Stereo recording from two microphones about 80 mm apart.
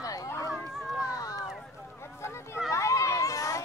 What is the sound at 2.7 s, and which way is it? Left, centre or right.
Children playing, left.